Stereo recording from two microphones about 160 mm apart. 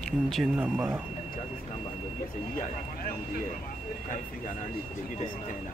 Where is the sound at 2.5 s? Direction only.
60° left (ahead or behind).